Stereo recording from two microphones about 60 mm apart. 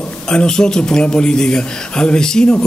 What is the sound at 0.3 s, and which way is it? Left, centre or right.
A man's voice, centre.